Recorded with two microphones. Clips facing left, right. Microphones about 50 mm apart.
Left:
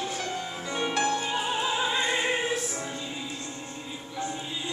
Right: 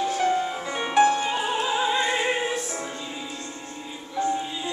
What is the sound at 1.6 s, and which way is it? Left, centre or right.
Opera, centre.